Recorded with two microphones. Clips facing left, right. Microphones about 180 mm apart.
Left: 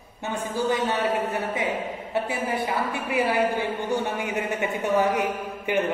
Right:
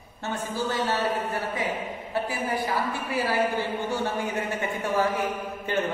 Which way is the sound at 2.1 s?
25° left (ahead or behind).